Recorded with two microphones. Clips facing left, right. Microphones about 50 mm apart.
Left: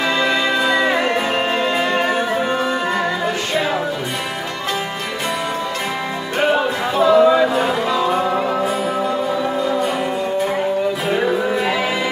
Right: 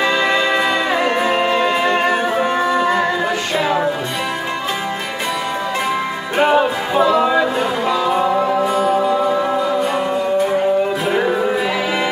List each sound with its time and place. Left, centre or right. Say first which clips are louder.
6.3 s music: right 3 dB; right